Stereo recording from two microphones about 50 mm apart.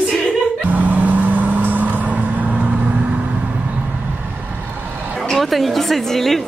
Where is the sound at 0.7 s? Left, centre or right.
Right.